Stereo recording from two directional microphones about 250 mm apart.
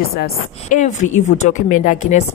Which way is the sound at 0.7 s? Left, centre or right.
Left.